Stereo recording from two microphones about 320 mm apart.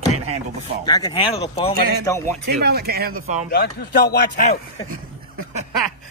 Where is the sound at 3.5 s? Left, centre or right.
Left.